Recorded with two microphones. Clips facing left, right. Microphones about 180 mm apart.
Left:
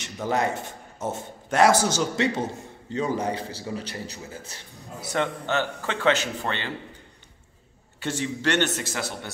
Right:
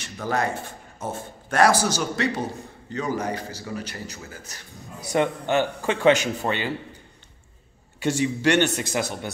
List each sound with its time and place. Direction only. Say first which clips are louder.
0.0 s a man's voice: left 1 dB; 20° left (ahead or behind)
5.0 s speech: right 4 dB; 15° right (ahead or behind)
8.0 s speech: right 5 dB; 10° right (ahead or behind)